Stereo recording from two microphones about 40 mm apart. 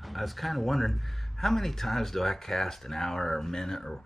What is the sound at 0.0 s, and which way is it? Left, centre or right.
Speech, centre.